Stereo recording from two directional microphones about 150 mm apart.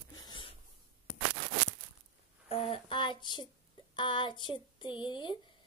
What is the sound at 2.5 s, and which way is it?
Speech, 40° left (ahead or behind).